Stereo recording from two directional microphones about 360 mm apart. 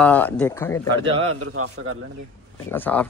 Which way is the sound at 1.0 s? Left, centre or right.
Centre.